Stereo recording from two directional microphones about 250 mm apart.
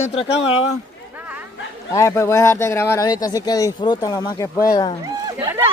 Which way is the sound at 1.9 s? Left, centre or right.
Centre.